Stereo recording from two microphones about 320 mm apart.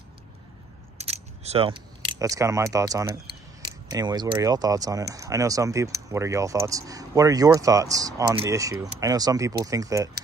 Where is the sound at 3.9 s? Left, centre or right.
Centre.